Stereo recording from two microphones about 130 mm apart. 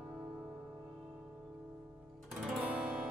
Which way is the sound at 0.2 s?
5° right (ahead or behind).